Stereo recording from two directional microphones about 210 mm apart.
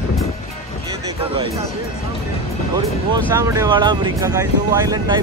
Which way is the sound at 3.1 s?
15° right (ahead or behind).